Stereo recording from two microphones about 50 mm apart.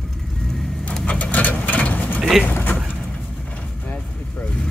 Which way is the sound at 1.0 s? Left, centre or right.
Left.